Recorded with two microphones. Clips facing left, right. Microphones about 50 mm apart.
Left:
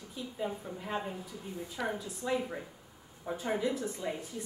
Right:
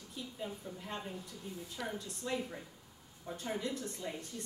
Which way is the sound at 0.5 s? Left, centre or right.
Left.